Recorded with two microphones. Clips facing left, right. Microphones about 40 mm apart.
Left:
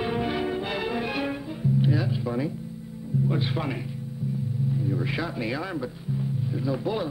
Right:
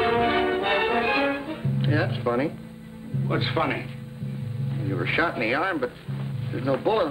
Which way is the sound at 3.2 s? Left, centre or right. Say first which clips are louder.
Right 6 dB; right.